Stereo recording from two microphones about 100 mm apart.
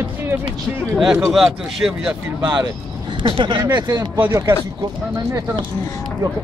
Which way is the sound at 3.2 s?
55° right (ahead or behind).